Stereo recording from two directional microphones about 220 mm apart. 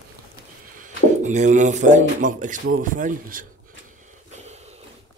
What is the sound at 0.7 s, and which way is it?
Speech, 35° right (ahead or behind).